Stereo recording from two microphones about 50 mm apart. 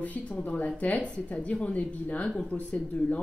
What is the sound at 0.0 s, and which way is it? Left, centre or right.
Speech, left.